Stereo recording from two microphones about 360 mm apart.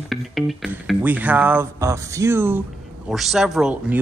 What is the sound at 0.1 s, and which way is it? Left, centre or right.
A man's voice, centre.